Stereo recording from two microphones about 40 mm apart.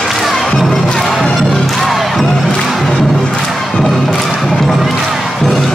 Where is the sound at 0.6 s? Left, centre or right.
Centre.